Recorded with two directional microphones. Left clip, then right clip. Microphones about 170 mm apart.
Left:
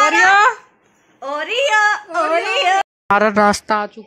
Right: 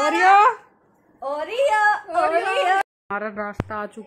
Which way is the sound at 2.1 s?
55° left (ahead or behind).